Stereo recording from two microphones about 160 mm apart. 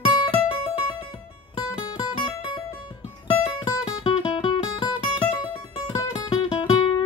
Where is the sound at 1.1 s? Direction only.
30° left (ahead or behind).